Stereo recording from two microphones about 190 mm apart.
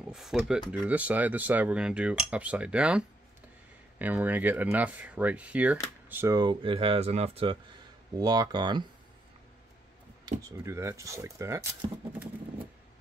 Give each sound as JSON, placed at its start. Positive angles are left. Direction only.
{"t": 0.1, "sound": "speech", "side_deg": 0}
{"t": 4.0, "sound": "speech", "side_deg": -10}
{"t": 10.5, "sound": "speech", "side_deg": -15}